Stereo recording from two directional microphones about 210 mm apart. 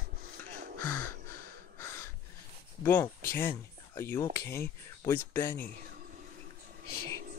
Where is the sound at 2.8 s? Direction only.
10° left (ahead or behind).